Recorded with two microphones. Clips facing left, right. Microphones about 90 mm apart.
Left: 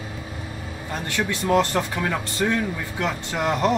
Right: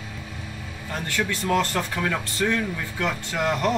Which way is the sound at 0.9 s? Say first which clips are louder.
Left 1 dB; 20° left (ahead or behind).